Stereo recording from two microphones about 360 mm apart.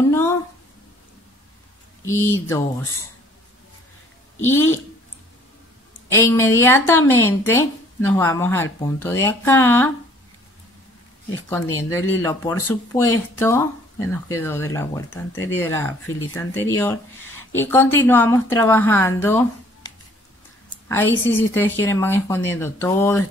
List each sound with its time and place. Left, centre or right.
0.1 s a sound: centre
2.0 s speech: centre
4.4 s speech: centre
6.0 s speech: centre
11.4 s speech: centre
20.9 s speech: centre